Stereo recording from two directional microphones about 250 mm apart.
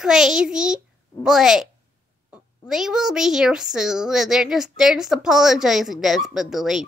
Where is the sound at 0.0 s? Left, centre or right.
Centre.